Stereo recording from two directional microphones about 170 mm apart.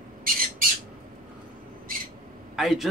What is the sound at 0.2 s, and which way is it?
Squawk, 55° right (ahead or behind).